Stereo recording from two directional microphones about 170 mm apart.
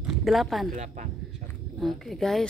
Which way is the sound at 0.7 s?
45° right (ahead or behind).